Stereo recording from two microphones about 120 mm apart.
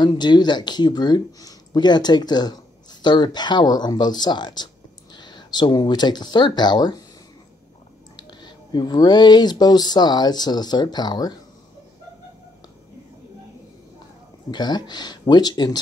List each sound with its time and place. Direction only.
0.0 s speech: 35° left (ahead or behind)
8.2 s speech: 35° left (ahead or behind)
14.5 s speech: 35° left (ahead or behind)